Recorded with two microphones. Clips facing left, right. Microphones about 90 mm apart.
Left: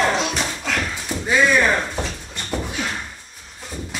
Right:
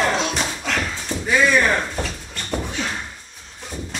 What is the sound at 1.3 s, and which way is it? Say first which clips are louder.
Speech: even; 15° left (ahead or behind).